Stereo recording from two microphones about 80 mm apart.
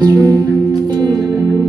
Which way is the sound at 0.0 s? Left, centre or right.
Right.